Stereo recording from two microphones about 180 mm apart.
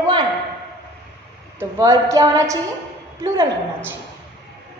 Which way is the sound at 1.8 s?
15° right (ahead or behind).